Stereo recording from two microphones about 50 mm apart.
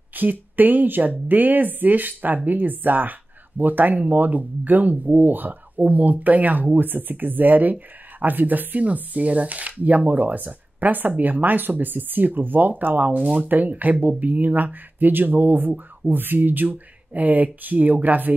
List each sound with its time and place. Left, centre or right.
0.1 s speech: right